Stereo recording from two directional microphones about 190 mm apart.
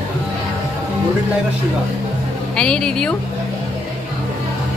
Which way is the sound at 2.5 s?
5° left (ahead or behind).